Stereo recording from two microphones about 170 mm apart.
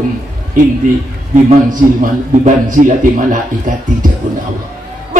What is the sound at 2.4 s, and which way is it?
A man's voice, 50° right (ahead or behind).